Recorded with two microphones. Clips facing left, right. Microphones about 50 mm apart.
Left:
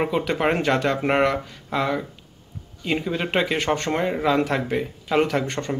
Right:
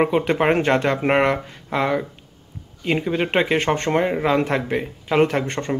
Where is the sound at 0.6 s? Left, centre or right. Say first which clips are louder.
Right 3 dB; right.